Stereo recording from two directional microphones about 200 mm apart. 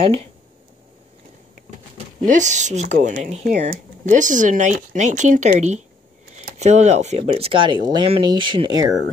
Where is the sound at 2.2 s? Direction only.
40° right (ahead or behind); by 8.9 s 20° right (ahead or behind).